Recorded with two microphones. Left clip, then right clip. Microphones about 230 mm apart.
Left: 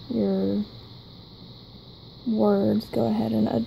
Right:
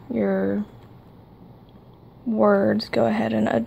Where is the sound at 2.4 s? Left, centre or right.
Centre.